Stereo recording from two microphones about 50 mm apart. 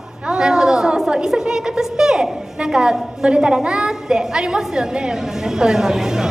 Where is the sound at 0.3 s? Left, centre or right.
Centre.